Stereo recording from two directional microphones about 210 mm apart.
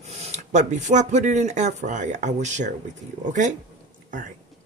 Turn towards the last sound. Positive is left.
turn(degrees=-35)  # may be behind; listen again after turning